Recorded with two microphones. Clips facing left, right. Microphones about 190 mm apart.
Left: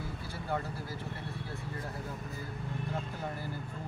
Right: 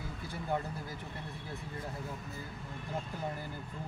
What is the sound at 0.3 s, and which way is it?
Speech, 20° right (ahead or behind).